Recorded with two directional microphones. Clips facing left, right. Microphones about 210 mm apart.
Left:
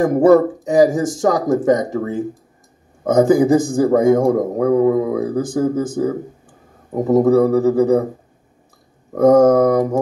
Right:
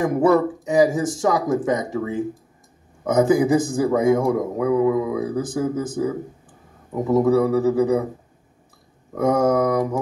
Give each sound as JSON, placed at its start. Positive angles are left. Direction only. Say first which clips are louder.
{"t": 0.0, "sound": "speech", "louder": "left 6 dB", "side_deg": 50}
{"t": 9.1, "sound": "speech", "louder": "left 8 dB", "side_deg": 55}